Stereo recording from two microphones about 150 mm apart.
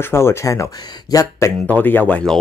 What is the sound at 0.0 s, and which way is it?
Speech, 15° left (ahead or behind).